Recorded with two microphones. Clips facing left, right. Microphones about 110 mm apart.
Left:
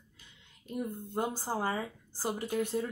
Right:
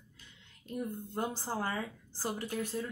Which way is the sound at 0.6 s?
15° left (ahead or behind).